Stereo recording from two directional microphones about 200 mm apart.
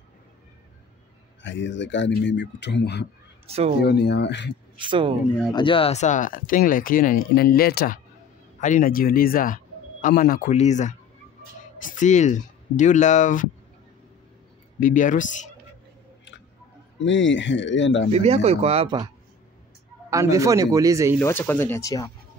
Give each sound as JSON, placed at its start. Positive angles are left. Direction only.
{"t": 1.4, "sound": "speech", "side_deg": 65}
{"t": 3.4, "sound": "speech", "side_deg": -30}
{"t": 3.8, "sound": "speech", "side_deg": 55}
{"t": 4.7, "sound": "speech", "side_deg": -25}
{"t": 5.5, "sound": "speech", "side_deg": 25}
{"t": 14.8, "sound": "speech", "side_deg": 40}
{"t": 17.0, "sound": "speech", "side_deg": 65}
{"t": 18.1, "sound": "speech", "side_deg": -30}
{"t": 20.1, "sound": "a man's voice", "side_deg": -15}
{"t": 21.2, "sound": "speech", "side_deg": 10}